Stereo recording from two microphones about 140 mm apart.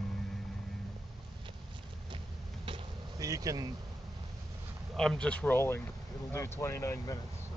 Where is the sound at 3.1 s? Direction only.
25° right (ahead or behind).